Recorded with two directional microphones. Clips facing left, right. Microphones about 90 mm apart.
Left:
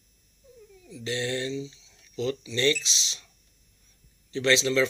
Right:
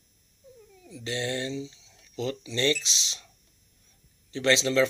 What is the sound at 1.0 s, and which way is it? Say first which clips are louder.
Speech: left 1 dB; 30° right (ahead or behind).